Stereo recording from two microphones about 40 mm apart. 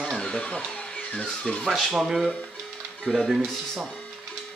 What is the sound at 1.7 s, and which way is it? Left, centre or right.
Speech, centre.